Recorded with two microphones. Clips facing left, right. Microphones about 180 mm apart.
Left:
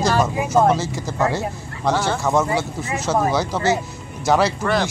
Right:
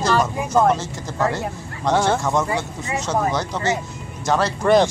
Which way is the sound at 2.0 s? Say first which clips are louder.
Left 1 dB; 5° left (ahead or behind).